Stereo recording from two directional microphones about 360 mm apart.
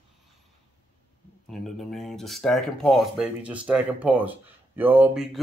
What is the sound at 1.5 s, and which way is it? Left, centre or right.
Speech, centre.